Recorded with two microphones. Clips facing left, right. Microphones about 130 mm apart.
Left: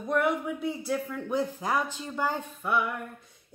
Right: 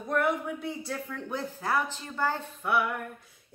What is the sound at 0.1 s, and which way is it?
A woman's voice, 5° left (ahead or behind).